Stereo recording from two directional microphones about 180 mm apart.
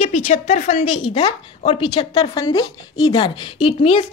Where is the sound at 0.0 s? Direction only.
35° left (ahead or behind).